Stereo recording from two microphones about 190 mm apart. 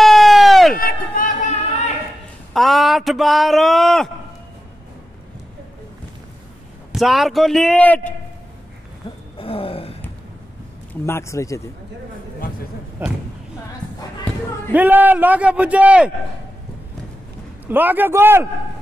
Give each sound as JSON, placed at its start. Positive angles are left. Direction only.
{"t": 0.0, "sound": "a sound", "side_deg": 0}
{"t": 0.7, "sound": "run", "side_deg": 45}
{"t": 2.5, "sound": "speech", "side_deg": 0}
{"t": 6.9, "sound": "a man's voice", "side_deg": 0}
{"t": 9.4, "sound": "gasp", "side_deg": 30}
{"t": 10.9, "sound": "speech", "side_deg": 15}
{"t": 13.0, "sound": "a man's voice", "side_deg": -10}
{"t": 14.7, "sound": "a man's voice", "side_deg": -10}
{"t": 17.6, "sound": "a man's voice", "side_deg": -10}